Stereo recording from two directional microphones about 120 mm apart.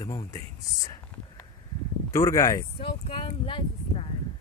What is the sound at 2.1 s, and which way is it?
Speech, 30° left (ahead or behind).